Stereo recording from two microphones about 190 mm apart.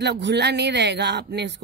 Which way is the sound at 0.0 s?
65° right (ahead or behind).